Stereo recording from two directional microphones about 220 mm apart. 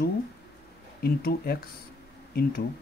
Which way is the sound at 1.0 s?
45° left (ahead or behind).